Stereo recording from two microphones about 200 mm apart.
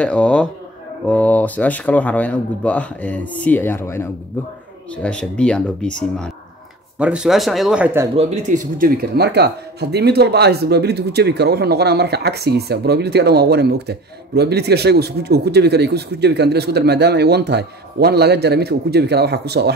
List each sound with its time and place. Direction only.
0.0 s speech: 5° left (ahead or behind); by 8.1 s 10° right (ahead or behind)
8.2 s speech: 35° right (ahead or behind); by 19.7 s 55° right (ahead or behind)